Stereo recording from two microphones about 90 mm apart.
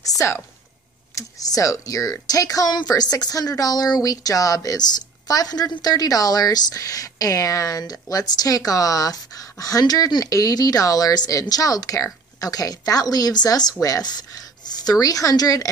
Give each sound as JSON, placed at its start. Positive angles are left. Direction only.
{"t": 0.2, "sound": "speech", "side_deg": 30}